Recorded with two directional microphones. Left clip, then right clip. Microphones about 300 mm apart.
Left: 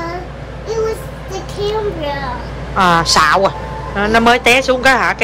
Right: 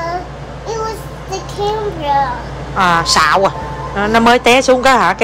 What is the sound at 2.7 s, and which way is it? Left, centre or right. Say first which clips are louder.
Speech: even; centre.